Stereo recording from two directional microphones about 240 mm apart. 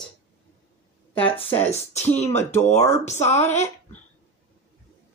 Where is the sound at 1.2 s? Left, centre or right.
Left.